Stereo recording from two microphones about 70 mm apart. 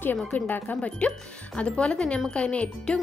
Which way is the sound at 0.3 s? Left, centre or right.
Left.